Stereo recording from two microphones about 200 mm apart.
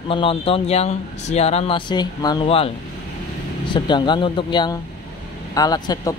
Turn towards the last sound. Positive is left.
turn(degrees=20)  # may be behind; listen again after turning